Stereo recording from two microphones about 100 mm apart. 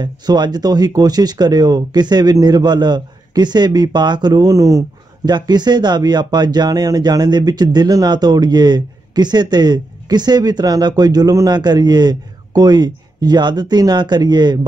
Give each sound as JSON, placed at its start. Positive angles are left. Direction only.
{"t": 0.0, "sound": "speech", "side_deg": -45}
{"t": 5.2, "sound": "speech", "side_deg": -45}